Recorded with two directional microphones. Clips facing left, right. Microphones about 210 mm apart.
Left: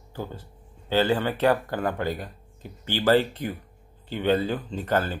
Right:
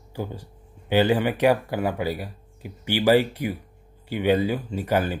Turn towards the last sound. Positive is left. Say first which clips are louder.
# right 2 dB
turn(degrees=-10)  # may be behind; listen again after turning